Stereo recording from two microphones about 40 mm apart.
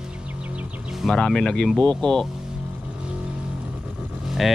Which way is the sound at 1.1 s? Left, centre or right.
Centre.